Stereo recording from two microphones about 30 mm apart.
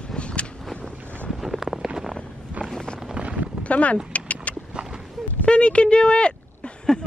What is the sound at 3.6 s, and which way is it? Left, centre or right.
Speech, left.